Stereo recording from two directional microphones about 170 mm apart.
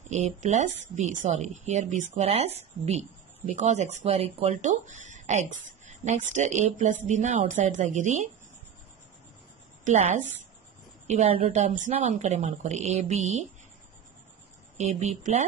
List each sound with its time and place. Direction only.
0.1 s speech: 45° right (ahead or behind)
9.8 s speech: 50° right (ahead or behind)
11.1 s a woman's voice: 35° right (ahead or behind)
14.8 s a woman's voice: 40° right (ahead or behind)